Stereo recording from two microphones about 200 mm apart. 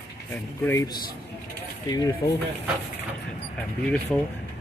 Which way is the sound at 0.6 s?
15° left (ahead or behind).